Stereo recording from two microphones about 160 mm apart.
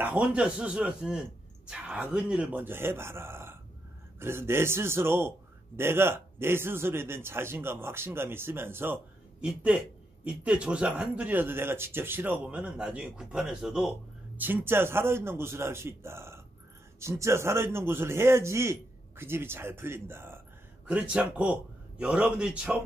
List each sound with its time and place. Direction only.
0.0 s a man's voice: 5° right (ahead or behind)